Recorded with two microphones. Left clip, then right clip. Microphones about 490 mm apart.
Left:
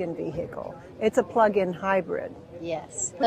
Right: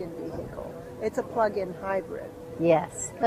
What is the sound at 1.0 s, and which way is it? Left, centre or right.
Speech, left.